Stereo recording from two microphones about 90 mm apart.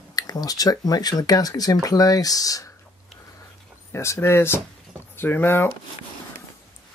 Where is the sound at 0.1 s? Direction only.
45° left (ahead or behind).